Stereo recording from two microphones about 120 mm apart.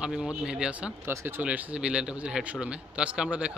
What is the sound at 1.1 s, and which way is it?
A man's voice, 20° right (ahead or behind).